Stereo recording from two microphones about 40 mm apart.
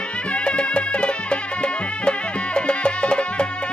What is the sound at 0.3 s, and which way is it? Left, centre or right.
Music, left.